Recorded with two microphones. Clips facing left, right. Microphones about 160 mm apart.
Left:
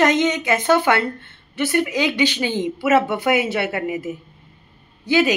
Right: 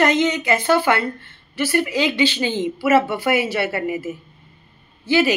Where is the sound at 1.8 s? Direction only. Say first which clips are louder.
Even; 15° left (ahead or behind).